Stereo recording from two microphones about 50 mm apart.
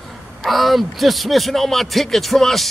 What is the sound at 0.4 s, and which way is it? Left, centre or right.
Speech, centre.